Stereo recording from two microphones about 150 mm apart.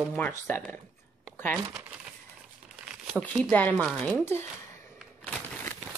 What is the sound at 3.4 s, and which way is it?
Speech, 10° left (ahead or behind).